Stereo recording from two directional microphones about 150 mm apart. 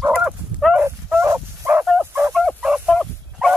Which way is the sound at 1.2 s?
15° right (ahead or behind).